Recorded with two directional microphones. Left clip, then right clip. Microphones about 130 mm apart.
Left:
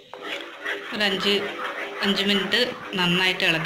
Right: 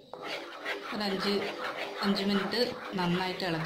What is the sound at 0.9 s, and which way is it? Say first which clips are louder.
Speech: left 10 dB; 65° right (ahead or behind).